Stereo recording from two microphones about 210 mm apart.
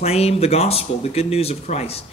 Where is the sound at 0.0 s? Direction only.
30° left (ahead or behind).